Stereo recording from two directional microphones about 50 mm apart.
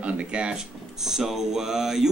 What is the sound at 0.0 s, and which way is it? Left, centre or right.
Speech, right.